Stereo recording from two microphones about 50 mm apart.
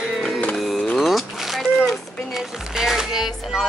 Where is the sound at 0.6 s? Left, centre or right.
Centre.